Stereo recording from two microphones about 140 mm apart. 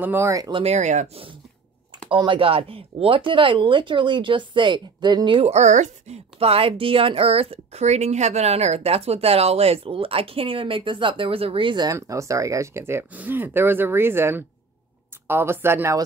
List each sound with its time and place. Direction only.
0.0 s speech: 15° right (ahead or behind)
0.5 s a woman's voice: 40° right (ahead or behind)
0.7 s speech: 55° right (ahead or behind)
2.0 s a woman's voice: 35° right (ahead or behind)
5.5 s a woman's voice: 55° right (ahead or behind); by 16.0 s 15° right (ahead or behind)